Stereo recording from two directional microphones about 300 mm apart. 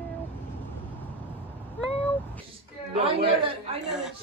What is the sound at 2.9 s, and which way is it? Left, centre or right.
Speech, centre.